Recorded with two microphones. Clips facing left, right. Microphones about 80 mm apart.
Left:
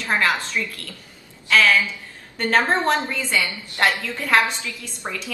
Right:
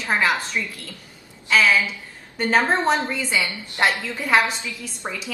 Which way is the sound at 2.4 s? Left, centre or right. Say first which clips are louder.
Even; centre.